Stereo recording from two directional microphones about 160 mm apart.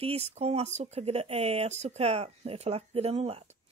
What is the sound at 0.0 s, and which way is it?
Speech, 40° right (ahead or behind).